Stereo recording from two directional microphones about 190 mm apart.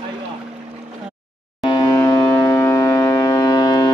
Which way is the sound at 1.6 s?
20° left (ahead or behind).